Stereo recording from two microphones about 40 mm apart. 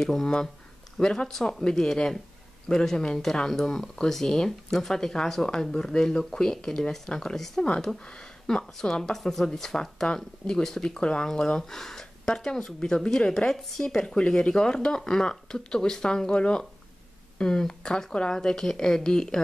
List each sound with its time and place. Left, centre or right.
0.0 s speech: centre
8.1 s speech: centre
9.1 s speech: centre
11.0 s speech: left
11.7 s speech: centre